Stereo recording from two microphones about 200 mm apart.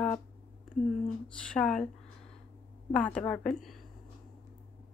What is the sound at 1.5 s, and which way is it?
Speech, 5° left (ahead or behind).